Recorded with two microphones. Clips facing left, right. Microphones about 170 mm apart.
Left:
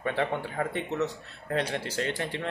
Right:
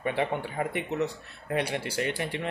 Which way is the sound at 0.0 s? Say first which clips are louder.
Even; 15° right (ahead or behind).